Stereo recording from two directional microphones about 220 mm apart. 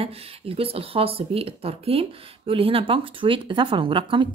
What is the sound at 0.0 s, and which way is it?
Speech, 25° right (ahead or behind).